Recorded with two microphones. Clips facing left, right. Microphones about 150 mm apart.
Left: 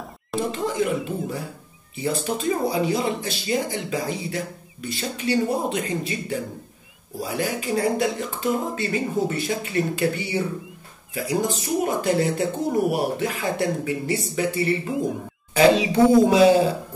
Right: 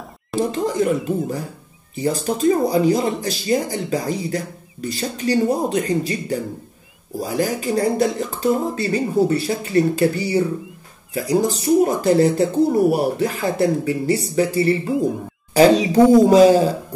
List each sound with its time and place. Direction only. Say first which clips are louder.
0.4 s speech: right 5 dB; 40° right (ahead or behind)